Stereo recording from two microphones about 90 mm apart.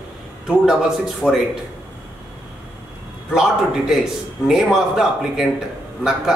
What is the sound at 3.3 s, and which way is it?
A man's voice, 5° right (ahead or behind).